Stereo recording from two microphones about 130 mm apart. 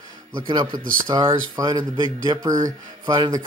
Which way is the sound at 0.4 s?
40° right (ahead or behind).